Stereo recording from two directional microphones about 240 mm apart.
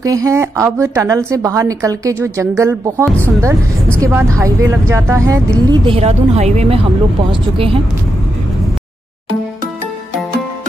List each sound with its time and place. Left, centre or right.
0.0 s a woman's voice: centre
5.7 s speech: right